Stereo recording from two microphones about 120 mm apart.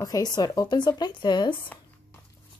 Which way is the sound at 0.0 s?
30° left (ahead or behind).